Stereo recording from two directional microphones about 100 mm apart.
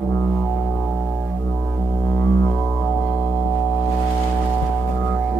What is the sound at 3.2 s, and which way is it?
Music, 15° left (ahead or behind).